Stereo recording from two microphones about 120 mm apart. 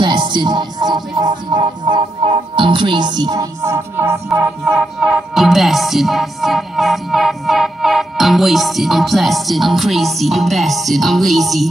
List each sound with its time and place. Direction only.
0.0 s music: 40° right (ahead or behind); by 11.7 s centre (ahead or behind)